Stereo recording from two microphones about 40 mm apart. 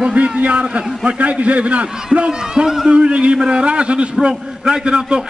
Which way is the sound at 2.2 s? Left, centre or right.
Right.